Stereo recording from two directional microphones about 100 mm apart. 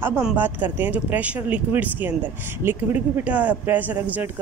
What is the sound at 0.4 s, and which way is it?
Speech, 20° right (ahead or behind).